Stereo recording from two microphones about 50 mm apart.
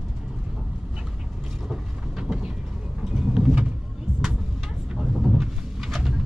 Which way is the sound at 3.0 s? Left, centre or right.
Centre.